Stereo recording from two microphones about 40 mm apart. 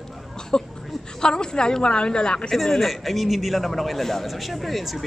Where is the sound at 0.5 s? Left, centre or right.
Centre.